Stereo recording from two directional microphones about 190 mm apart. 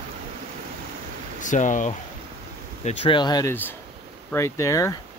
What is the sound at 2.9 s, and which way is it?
Speech, 30° left (ahead or behind).